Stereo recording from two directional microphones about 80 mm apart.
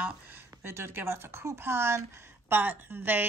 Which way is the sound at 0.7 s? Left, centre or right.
Right.